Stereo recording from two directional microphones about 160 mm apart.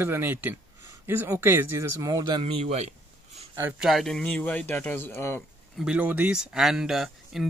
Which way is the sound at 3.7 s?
Centre (ahead or behind).